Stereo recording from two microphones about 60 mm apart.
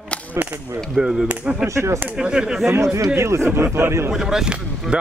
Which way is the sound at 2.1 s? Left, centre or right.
Centre.